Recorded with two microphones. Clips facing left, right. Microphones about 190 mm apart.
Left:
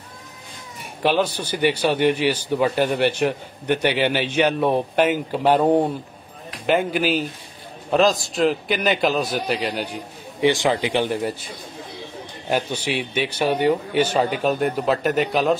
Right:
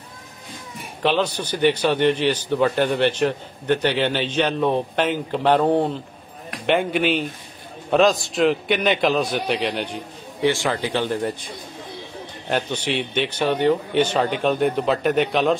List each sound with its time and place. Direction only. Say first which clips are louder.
1.0 s a man's voice: left 1 dB; 10° left (ahead or behind)
6.6 s a man's voice: even; centre (ahead or behind)
10.4 s a man's voice: left 2 dB; 15° left (ahead or behind)
12.4 s a man's voice: even; 10° left (ahead or behind)